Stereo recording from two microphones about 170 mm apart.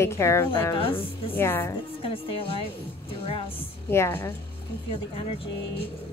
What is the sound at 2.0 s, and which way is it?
Speech, 30° left (ahead or behind).